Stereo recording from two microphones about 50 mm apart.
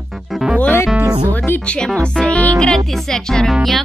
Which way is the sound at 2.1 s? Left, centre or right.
Left.